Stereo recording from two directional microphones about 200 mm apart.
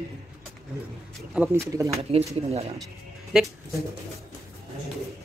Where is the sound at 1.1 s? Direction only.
5° right (ahead or behind).